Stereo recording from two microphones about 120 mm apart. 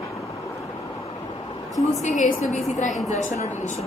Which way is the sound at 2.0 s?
80° left.